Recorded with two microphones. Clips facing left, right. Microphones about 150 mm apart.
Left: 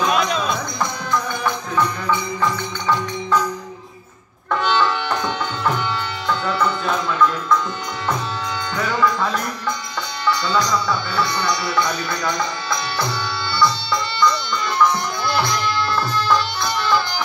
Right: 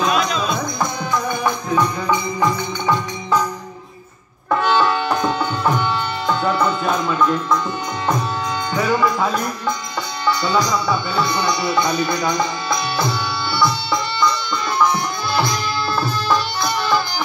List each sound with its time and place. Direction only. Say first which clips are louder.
0.1 s music: even; centre (ahead or behind)
1.4 s music: right 2 dB; 15° right (ahead or behind)
4.5 s music: right 2 dB; 10° right (ahead or behind)
8.7 s music: right 2 dB; 10° right (ahead or behind)
16.3 s music: right 1 dB; 10° right (ahead or behind)